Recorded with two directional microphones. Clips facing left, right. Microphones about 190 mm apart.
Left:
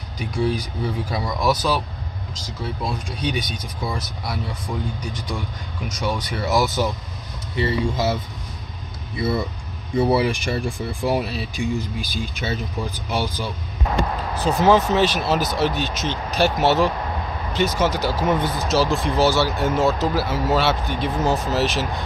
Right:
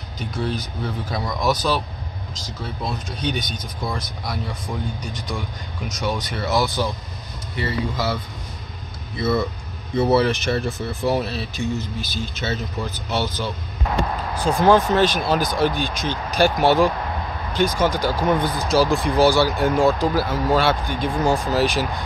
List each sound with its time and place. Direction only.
0.2 s speech: 10° left (ahead or behind)
3.3 s speech: 10° left (ahead or behind)
9.1 s speech: 10° left (ahead or behind)